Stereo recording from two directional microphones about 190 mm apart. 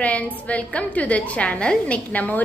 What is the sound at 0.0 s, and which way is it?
A woman's voice, 10° left (ahead or behind).